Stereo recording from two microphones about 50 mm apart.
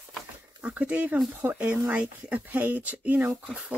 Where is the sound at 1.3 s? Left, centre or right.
Right.